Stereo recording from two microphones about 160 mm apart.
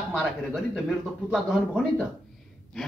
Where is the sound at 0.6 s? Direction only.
Centre (ahead or behind).